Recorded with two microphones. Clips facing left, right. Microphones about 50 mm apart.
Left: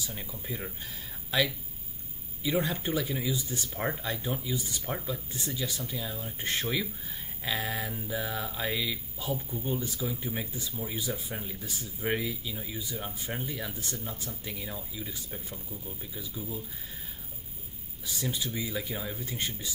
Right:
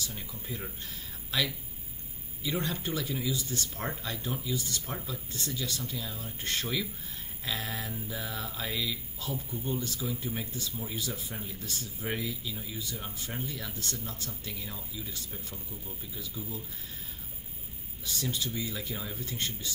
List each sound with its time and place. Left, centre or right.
0.0 s speech: centre
2.4 s speech: centre
18.0 s speech: centre